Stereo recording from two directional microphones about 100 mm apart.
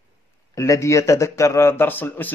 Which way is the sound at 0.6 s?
30° left (ahead or behind).